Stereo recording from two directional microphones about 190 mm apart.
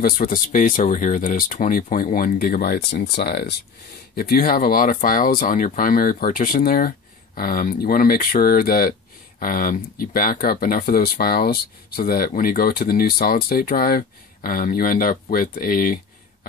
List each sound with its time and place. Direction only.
0.0 s speech: 45° left (ahead or behind)